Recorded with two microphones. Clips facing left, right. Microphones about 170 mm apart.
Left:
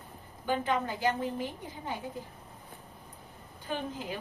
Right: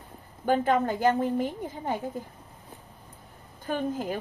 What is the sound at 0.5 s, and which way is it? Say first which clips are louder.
A woman's voice: right 7 dB; 50° right (ahead or behind).